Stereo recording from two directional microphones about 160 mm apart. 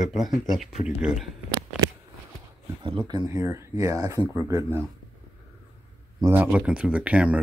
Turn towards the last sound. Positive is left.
turn(degrees=-10)  # may be behind; listen again after turning